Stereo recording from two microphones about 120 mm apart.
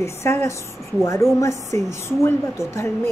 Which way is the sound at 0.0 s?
25° left (ahead or behind).